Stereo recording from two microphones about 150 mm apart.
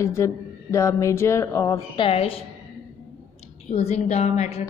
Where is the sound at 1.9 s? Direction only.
35° left (ahead or behind).